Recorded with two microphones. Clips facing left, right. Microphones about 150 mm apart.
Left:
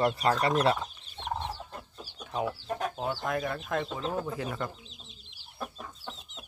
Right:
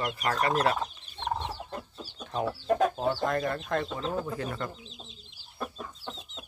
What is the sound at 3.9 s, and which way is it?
Speech, 20° left (ahead or behind).